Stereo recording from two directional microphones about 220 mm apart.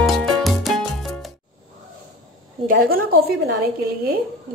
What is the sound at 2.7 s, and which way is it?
Speech, 40° right (ahead or behind).